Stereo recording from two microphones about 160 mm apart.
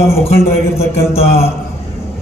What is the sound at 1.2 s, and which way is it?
Speech, 15° left (ahead or behind).